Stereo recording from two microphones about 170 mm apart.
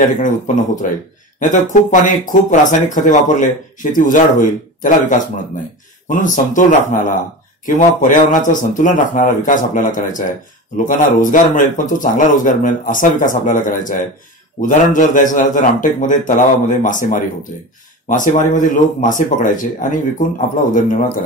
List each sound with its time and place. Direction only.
0.8 s speech: 50° left (ahead or behind)